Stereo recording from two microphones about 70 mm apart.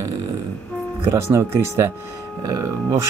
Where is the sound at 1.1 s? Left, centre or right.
Right.